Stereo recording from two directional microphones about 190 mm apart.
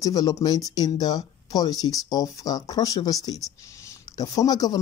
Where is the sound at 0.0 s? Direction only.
20° left (ahead or behind).